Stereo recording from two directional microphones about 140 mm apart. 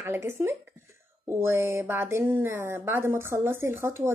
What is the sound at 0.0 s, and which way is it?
Speech, 15° right (ahead or behind).